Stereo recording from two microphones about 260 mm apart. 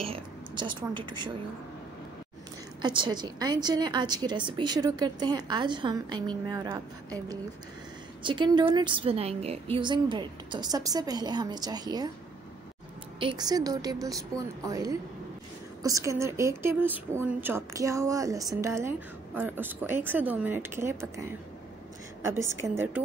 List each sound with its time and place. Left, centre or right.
0.0 s a sound: centre
2.8 s a woman's voice: centre
8.2 s a woman's voice: centre
13.2 s a woman's voice: centre